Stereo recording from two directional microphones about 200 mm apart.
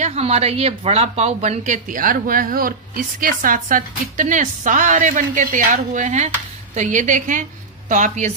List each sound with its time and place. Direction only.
0.0 s speech: 35° right (ahead or behind)